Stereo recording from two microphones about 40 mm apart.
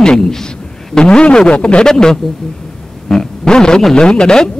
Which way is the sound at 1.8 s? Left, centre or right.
Centre.